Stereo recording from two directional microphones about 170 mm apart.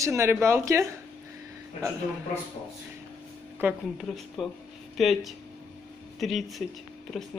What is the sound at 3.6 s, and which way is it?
Speech, 5° right (ahead or behind).